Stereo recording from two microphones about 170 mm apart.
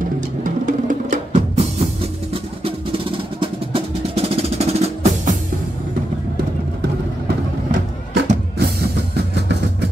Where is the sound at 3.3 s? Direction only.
35° right (ahead or behind).